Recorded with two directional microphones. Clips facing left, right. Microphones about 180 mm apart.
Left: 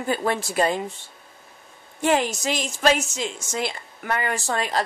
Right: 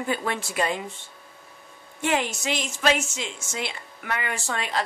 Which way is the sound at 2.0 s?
40° left (ahead or behind).